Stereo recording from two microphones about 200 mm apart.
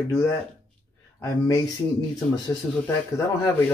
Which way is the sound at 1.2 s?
15° left (ahead or behind).